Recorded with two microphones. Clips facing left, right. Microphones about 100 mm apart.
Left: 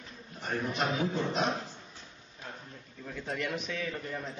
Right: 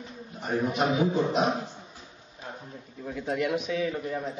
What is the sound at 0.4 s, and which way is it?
Speech, 5° right (ahead or behind).